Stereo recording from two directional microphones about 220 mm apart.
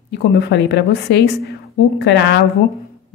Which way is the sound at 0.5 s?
50° left (ahead or behind).